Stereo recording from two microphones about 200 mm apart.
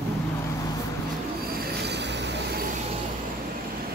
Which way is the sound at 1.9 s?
60° right (ahead or behind).